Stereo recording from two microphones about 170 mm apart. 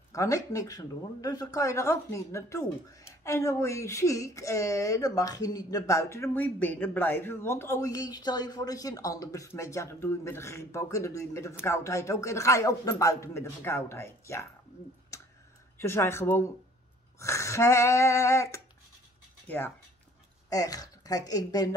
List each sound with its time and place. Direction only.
0.1 s speech: 20° left (ahead or behind)
15.8 s speech: 15° left (ahead or behind)
20.4 s a woman's voice: 20° left (ahead or behind)